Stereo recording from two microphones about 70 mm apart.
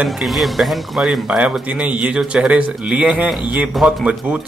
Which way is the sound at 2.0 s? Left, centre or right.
Centre.